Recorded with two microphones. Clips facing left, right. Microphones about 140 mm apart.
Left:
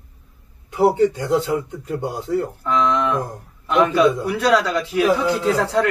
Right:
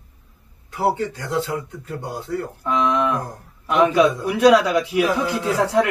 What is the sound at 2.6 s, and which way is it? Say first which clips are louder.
A man's voice: right 1 dB; 10° right (ahead or behind).